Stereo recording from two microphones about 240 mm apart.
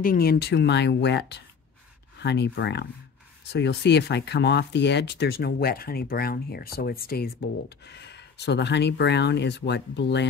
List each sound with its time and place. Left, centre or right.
0.0 s speech: left